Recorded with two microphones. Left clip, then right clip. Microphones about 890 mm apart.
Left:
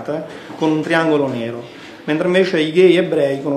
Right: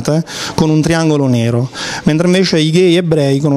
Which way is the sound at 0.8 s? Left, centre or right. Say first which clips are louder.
Right 2 dB; right.